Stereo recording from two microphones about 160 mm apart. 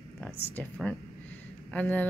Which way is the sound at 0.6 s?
10° left (ahead or behind).